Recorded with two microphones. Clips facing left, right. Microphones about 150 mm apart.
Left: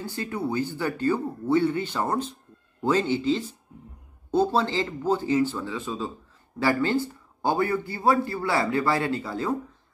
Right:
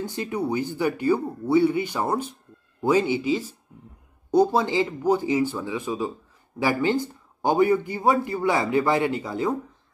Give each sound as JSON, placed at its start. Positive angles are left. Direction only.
{"t": 0.0, "sound": "a man's voice", "side_deg": -15}